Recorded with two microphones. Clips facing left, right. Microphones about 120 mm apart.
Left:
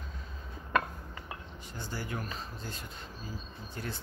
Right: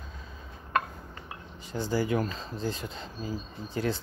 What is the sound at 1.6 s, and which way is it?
Speech, 90° right.